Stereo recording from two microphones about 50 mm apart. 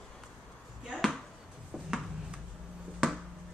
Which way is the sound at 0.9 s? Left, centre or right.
Centre.